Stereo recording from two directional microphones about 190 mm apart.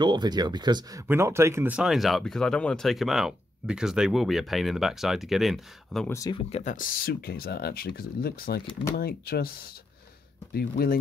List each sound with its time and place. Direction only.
0.0 s speech: 25° right (ahead or behind); by 6.0 s centre (ahead or behind)
6.0 s speech: 15° left (ahead or behind)
6.5 s speech: 40° left (ahead or behind)